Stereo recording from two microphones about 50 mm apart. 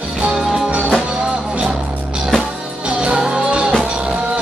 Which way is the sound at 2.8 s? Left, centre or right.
Right.